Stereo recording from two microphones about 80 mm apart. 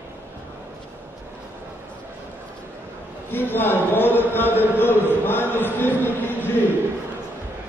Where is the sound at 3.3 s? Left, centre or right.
Left.